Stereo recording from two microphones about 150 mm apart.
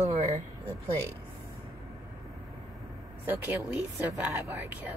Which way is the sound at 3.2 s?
10° right (ahead or behind).